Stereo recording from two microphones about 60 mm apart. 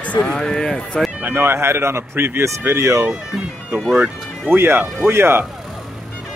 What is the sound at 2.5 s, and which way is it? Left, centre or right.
Speech, right.